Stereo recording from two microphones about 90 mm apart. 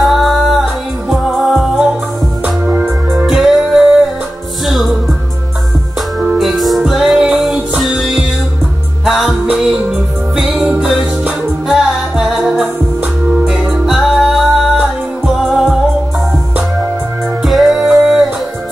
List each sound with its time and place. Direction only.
0.0 s music: centre (ahead or behind)
2.4 s music: 20° right (ahead or behind)
3.3 s music: centre (ahead or behind)
6.3 s music: centre (ahead or behind)
13.8 s music: 5° right (ahead or behind)
17.4 s music: centre (ahead or behind)